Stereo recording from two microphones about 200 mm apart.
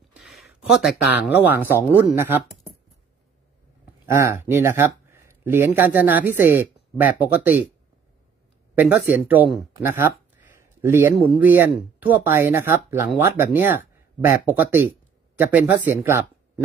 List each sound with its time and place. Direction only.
0.1 s speech: centre (ahead or behind)
4.0 s speech: 10° right (ahead or behind)
8.7 s speech: 10° right (ahead or behind)